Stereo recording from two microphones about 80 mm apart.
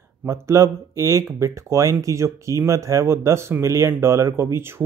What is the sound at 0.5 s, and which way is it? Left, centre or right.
Speech, right.